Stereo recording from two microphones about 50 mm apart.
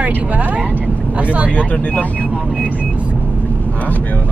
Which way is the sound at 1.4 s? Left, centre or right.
Left.